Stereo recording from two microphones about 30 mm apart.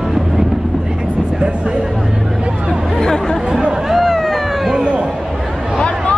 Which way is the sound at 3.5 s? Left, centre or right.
Right.